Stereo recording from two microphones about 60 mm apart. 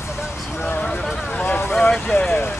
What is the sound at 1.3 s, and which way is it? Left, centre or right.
Vehicle, left.